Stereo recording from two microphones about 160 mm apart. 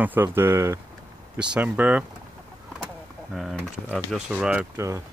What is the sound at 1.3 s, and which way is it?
Speech, 5° right (ahead or behind).